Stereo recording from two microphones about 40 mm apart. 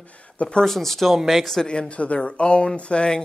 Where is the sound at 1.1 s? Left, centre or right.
Centre.